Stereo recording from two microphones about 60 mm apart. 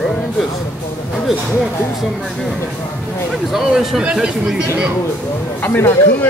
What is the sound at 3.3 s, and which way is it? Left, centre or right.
Speech, centre.